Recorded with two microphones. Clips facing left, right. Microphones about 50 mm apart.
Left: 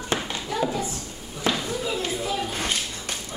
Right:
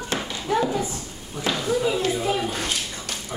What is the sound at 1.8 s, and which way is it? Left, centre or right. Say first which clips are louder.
Speech: right 5 dB; centre.